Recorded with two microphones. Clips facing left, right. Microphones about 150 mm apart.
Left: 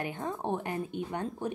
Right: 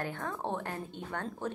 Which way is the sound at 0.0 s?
15° left (ahead or behind).